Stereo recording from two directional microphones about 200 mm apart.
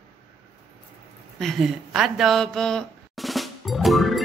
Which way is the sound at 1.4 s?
Centre (ahead or behind).